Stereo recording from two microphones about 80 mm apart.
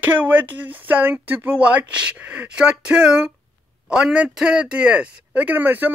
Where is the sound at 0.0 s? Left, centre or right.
Right.